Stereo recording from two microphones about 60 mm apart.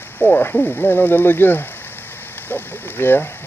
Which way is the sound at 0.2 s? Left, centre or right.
Left.